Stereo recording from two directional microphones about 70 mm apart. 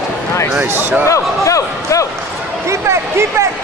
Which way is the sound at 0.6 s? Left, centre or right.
Right.